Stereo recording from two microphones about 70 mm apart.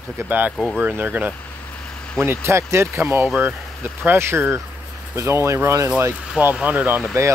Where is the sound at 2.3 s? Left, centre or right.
Right.